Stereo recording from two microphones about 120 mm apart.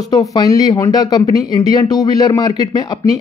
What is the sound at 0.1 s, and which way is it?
Speech, 30° left (ahead or behind).